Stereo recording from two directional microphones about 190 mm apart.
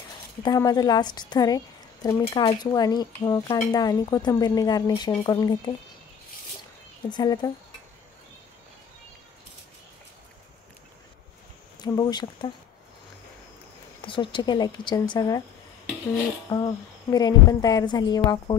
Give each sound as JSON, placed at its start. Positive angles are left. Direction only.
{"t": 0.4, "sound": "a woman's voice", "side_deg": 20}
{"t": 7.1, "sound": "a woman's voice", "side_deg": 20}
{"t": 11.8, "sound": "a woman's voice", "side_deg": 20}
{"t": 14.0, "sound": "a woman's voice", "side_deg": 25}
{"t": 16.5, "sound": "a woman's voice", "side_deg": 20}